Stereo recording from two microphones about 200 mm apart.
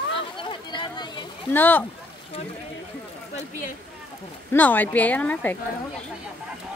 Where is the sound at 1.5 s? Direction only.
10° left (ahead or behind).